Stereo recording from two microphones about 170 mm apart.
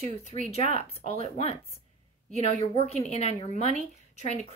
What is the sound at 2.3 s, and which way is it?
Speech, 40° left (ahead or behind).